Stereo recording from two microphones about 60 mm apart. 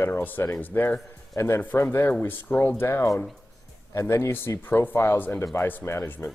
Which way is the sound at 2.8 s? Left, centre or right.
Left.